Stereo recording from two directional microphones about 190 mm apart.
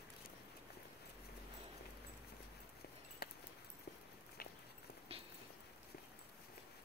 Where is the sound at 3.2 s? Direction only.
55° left (ahead or behind).